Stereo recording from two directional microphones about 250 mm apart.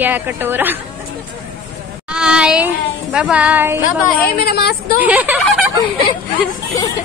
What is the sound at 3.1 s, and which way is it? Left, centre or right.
Speech, centre.